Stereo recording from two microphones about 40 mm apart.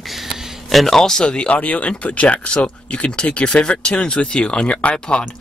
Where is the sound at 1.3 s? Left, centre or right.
Left.